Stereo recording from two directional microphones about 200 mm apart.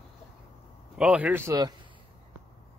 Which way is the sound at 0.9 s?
5° right (ahead or behind).